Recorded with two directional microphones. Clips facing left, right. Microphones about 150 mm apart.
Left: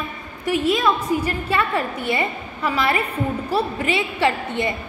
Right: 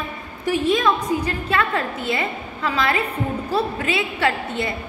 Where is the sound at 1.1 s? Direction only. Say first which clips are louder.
Left 1 dB; 20° right (ahead or behind).